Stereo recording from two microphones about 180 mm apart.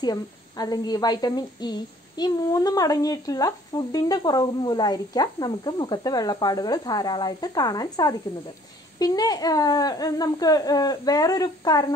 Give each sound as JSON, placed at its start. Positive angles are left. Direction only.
{"t": 0.0, "sound": "a woman's voice", "side_deg": 20}